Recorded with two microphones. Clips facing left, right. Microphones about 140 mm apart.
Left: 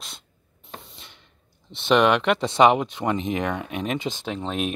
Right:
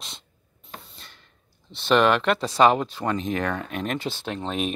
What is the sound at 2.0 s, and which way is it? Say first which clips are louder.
Speech: left 1 dB; 15° left (ahead or behind).